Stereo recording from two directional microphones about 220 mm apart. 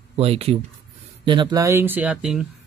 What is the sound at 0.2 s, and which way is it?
Speech, 25° right (ahead or behind).